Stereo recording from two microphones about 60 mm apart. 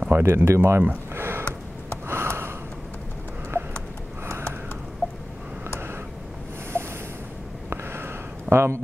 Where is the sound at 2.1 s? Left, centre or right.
Right.